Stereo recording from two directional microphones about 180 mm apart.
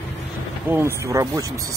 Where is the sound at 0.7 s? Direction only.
15° right (ahead or behind).